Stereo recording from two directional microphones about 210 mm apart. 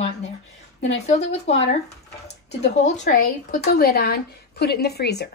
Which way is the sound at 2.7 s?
35° left (ahead or behind).